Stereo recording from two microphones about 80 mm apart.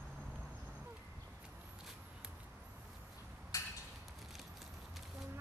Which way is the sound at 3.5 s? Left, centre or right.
Left.